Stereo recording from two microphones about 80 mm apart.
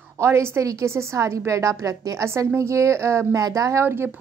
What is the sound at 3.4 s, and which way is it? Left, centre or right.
Speech, right.